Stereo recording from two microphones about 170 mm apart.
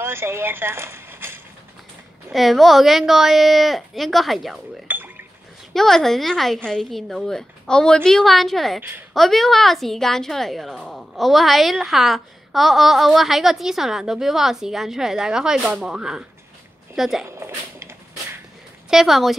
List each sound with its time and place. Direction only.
0.0 s speech: 15° right (ahead or behind)
2.3 s a woman's voice: centre (ahead or behind)
4.8 s cash register: 10° right (ahead or behind)
5.7 s a woman's voice: centre (ahead or behind)
17.4 s speech: 15° right (ahead or behind)
18.9 s a woman's voice: centre (ahead or behind)